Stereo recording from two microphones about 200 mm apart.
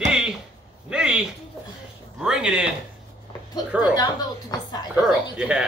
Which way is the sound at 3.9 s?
20° left (ahead or behind).